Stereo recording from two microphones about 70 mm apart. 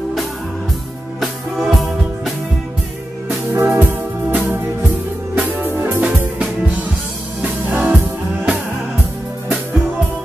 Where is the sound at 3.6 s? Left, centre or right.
Right.